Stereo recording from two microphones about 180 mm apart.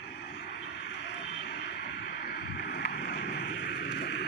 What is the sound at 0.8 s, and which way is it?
Vehicle, 75° left (ahead or behind).